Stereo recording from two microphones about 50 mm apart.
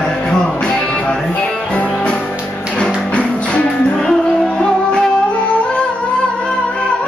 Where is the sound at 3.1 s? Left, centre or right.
Left.